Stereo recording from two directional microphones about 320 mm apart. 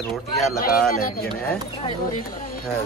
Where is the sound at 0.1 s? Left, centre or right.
Centre.